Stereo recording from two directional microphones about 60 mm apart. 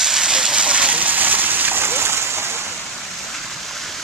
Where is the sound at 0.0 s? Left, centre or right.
Centre; by 2.6 s right.